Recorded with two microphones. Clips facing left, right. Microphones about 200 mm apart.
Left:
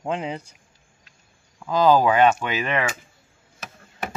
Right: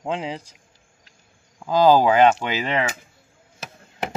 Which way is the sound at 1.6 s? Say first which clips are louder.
Right 2 dB; 30° right (ahead or behind).